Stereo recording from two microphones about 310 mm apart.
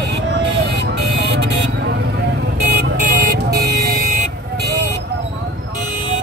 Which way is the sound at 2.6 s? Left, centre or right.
Right.